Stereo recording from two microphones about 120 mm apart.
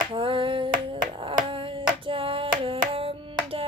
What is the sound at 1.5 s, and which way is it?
Hands, 45° right (ahead or behind).